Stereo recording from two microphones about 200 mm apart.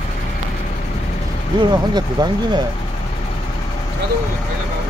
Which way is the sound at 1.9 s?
20° right (ahead or behind).